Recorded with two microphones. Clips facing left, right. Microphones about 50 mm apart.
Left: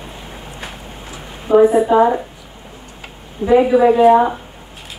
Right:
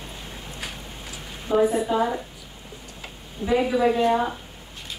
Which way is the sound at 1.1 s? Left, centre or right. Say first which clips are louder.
Left 10 dB; left.